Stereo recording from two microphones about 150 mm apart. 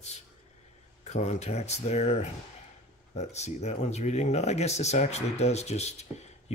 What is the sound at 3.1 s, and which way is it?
Speech, 50° left (ahead or behind).